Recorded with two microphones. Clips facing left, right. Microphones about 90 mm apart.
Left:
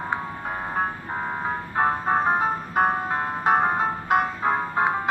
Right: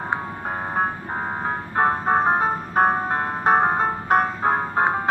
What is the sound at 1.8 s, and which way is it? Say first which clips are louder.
Ice cream truck: right 3 dB; 30° right (ahead or behind).